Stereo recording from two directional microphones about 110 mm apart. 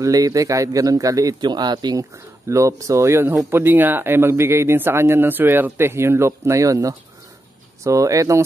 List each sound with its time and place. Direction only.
0.0 s a man's voice: 30° right (ahead or behind)
2.4 s speech: 30° right (ahead or behind)